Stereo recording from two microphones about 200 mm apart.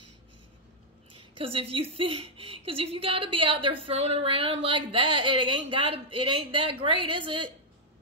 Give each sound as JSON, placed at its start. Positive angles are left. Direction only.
{"t": 1.4, "sound": "a woman's voice", "side_deg": -30}